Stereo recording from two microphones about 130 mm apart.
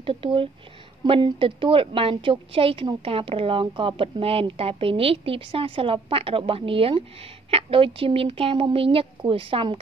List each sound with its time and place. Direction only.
0.0 s a woman's voice: 45° right (ahead or behind)